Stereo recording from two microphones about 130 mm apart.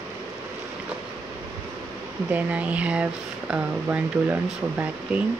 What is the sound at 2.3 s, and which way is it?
Speech, 10° right (ahead or behind).